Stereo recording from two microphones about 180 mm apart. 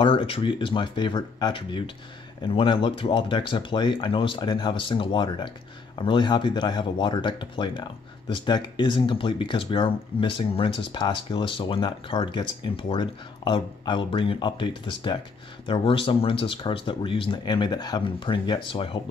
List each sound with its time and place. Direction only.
0.0 s speech: 30° left (ahead or behind)